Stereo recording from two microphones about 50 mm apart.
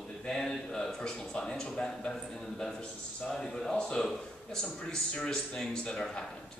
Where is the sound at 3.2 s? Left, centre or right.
Centre.